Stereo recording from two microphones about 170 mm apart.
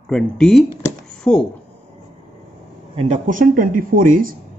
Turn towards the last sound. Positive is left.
turn(degrees=-55)  # may be behind; listen again after turning